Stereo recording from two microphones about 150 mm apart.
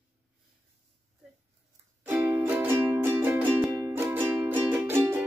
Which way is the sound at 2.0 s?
15° right (ahead or behind).